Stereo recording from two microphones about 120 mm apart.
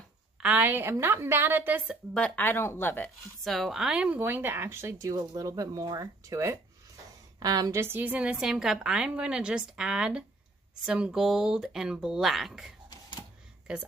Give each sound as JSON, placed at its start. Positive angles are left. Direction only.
{"t": 0.4, "sound": "speech", "side_deg": -10}
{"t": 2.1, "sound": "speech", "side_deg": 10}
{"t": 3.4, "sound": "a woman's voice", "side_deg": 0}